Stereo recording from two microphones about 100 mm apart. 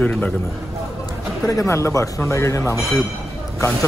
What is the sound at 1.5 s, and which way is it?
Speech, 30° left (ahead or behind).